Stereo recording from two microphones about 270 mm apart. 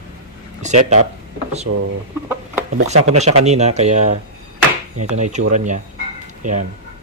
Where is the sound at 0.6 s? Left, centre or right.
Right.